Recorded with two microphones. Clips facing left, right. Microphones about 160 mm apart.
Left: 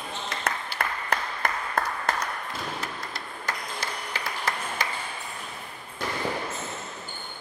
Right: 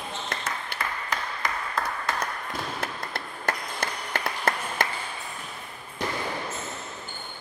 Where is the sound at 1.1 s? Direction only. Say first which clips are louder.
Left 2 dB; 55° left (ahead or behind).